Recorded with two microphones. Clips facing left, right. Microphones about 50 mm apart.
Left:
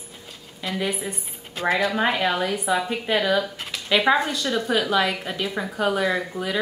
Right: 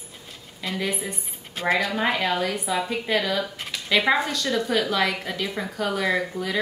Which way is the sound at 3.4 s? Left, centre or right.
Centre.